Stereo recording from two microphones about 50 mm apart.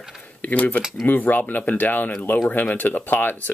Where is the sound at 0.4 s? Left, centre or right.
Left.